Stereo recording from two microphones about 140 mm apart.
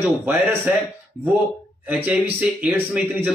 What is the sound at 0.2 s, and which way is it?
Speech, 15° right (ahead or behind).